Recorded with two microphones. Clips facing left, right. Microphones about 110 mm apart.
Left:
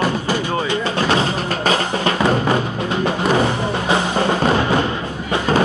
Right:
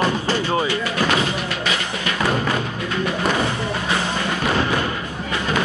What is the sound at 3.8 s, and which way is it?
Music, 30° left (ahead or behind).